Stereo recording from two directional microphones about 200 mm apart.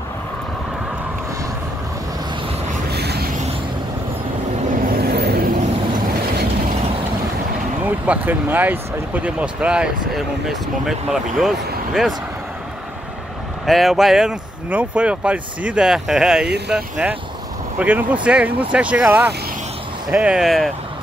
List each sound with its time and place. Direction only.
2.9 s a sound: 55° right (ahead or behind)
4.7 s vehicle: 45° right (ahead or behind)
7.8 s speech: 10° right (ahead or behind)
13.7 s speech: centre (ahead or behind)